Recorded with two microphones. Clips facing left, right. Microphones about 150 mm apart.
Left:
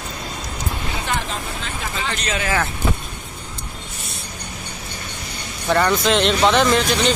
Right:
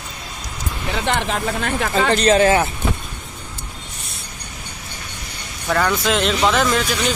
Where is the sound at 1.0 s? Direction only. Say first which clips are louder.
Right 8 dB; 65° right (ahead or behind).